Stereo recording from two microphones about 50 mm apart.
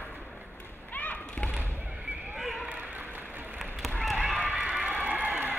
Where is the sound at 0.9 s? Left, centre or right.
Left.